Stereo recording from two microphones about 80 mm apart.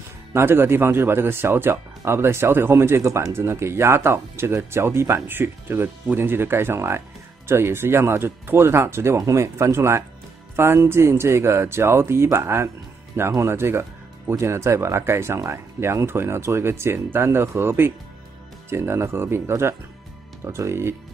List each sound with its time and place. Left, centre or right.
0.3 s speech: right